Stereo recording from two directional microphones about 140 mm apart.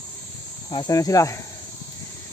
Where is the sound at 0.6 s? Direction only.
30° left (ahead or behind).